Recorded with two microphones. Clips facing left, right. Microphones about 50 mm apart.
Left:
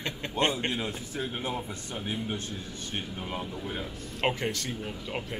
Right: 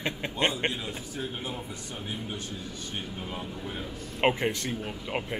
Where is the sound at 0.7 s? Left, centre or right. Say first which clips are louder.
Left 2 dB; centre.